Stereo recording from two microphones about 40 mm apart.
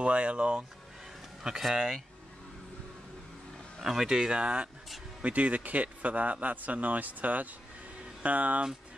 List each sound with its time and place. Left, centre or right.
0.0 s a man's voice: right
1.4 s speech: centre
3.8 s speech: centre
4.3 s a man's voice: right